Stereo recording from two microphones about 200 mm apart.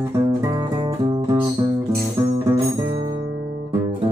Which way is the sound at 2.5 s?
25° right (ahead or behind).